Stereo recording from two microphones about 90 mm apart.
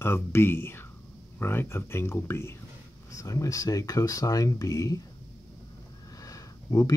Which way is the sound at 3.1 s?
40° left (ahead or behind).